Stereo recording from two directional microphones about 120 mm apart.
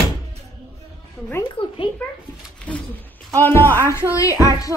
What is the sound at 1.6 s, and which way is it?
Speech, 50° left (ahead or behind).